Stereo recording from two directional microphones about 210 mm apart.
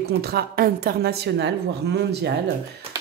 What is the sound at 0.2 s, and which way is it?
Speech, 45° right (ahead or behind).